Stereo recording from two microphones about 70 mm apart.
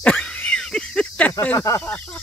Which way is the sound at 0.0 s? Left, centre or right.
Centre.